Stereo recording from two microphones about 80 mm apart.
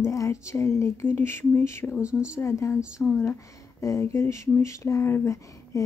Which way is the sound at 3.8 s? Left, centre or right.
Left.